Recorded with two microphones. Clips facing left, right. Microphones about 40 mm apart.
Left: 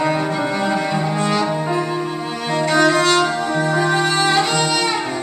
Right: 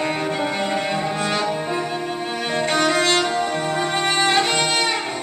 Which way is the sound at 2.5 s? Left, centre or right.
Right.